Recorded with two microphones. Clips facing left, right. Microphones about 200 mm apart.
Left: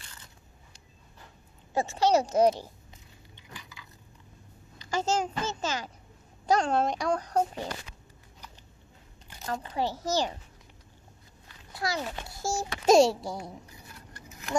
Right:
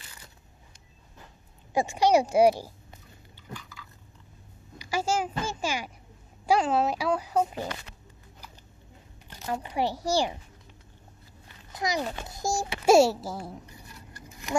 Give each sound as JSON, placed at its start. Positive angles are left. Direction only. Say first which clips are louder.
{"t": 1.7, "sound": "a child's voice", "louder": "right 2 dB", "side_deg": -15}
{"t": 4.7, "sound": "a child's voice", "louder": "even", "side_deg": -10}
{"t": 9.5, "sound": "a child's voice", "louder": "right 2 dB", "side_deg": -15}
{"t": 11.7, "sound": "a sound", "louder": "right 2 dB", "side_deg": -20}
{"t": 12.3, "sound": "a child's voice", "louder": "right 2 dB", "side_deg": -15}